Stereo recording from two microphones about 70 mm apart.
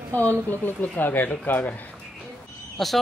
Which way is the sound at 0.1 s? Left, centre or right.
Left.